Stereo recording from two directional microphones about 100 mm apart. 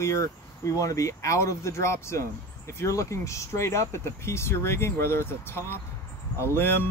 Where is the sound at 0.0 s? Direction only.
30° left (ahead or behind).